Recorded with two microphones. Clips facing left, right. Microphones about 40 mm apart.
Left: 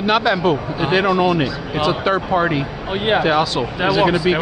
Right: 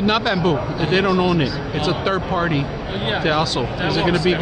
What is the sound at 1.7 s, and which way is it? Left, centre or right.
Speech, centre.